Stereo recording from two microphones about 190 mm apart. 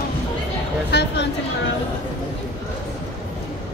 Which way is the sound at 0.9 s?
60° left (ahead or behind).